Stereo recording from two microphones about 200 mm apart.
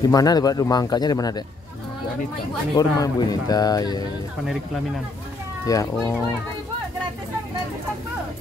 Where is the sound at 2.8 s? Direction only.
20° left (ahead or behind).